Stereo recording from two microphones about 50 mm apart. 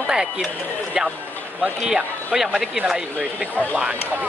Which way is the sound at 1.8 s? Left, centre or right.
Centre.